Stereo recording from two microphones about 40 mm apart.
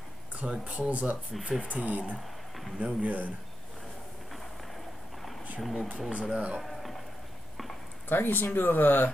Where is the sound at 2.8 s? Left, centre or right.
Right.